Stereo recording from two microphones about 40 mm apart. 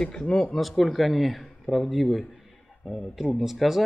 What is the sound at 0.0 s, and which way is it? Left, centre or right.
Speech, centre.